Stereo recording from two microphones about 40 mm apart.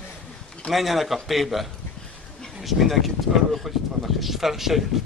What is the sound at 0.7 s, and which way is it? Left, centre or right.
Speech, centre.